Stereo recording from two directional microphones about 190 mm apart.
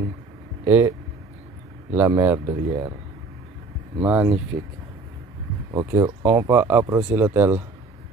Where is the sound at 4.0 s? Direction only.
10° right (ahead or behind).